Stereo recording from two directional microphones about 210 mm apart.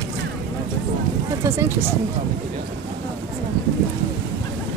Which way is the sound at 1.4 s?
10° right (ahead or behind).